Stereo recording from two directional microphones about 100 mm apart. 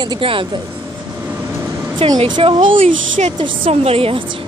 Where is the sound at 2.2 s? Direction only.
60° right (ahead or behind).